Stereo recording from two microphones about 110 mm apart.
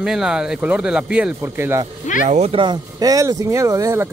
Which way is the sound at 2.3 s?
85° right.